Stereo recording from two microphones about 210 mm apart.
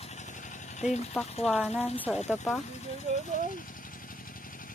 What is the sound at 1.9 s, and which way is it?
Speech, 10° left (ahead or behind).